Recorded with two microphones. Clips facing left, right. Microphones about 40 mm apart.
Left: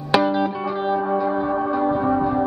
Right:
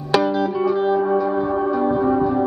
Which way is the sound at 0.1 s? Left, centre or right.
Centre.